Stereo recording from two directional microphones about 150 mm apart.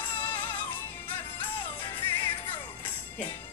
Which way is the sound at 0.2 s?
10° left (ahead or behind).